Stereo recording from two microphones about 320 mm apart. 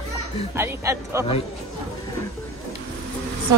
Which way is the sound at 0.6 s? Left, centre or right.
Centre.